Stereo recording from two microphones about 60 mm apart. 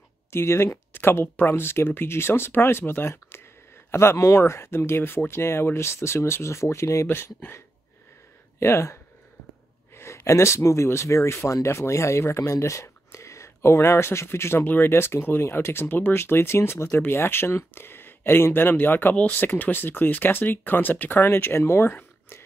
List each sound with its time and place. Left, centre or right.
0.3 s speech: left
1.2 s speech: left
1.5 s speech: left
8.5 s speech: left
14.6 s speech: left
14.9 s speech: left
19.1 s speech: left
19.4 s speech: left